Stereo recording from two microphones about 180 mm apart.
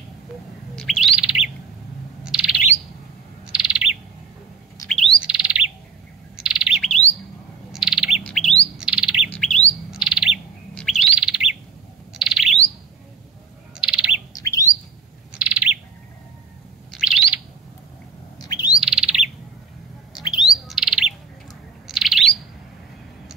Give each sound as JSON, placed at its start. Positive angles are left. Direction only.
{"t": 0.7, "sound": "bird", "side_deg": 0}
{"t": 13.7, "sound": "bird", "side_deg": -5}
{"t": 14.3, "sound": "bird", "side_deg": 20}
{"t": 15.3, "sound": "bird", "side_deg": -5}
{"t": 16.9, "sound": "bird", "side_deg": -5}
{"t": 18.8, "sound": "bird", "side_deg": -5}
{"t": 20.2, "sound": "bird", "side_deg": 0}